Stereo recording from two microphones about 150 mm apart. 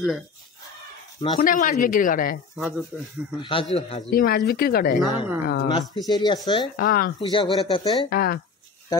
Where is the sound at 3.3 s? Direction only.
30° left (ahead or behind).